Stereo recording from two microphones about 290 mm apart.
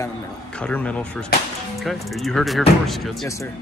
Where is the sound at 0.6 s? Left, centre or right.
Centre.